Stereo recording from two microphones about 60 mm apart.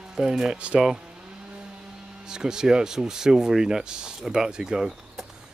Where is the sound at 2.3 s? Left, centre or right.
Centre.